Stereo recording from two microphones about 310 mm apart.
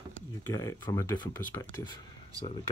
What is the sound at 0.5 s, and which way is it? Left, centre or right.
Speech, centre.